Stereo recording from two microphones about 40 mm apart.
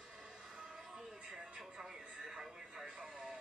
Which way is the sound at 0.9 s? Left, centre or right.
Centre.